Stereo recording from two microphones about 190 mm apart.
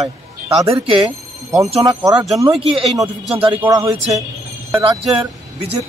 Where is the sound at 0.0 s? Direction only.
30° right (ahead or behind).